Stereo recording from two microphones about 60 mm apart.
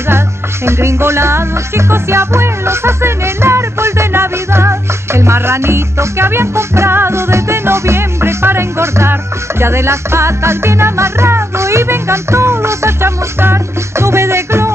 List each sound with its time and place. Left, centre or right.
0.7 s music: right